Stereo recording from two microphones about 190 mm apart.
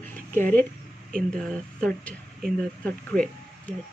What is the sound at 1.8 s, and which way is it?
Speech, 5° left (ahead or behind).